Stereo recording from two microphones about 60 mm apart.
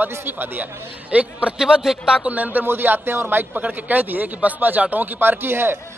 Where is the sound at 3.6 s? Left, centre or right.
Right.